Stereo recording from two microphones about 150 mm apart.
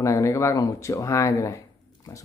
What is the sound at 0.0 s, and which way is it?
Speech, 20° left (ahead or behind).